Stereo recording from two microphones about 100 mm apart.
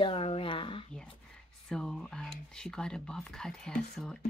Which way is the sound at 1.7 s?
5° left (ahead or behind).